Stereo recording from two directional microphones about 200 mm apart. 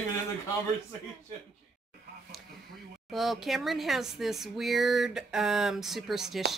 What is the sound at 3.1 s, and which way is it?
Speech, centre (ahead or behind).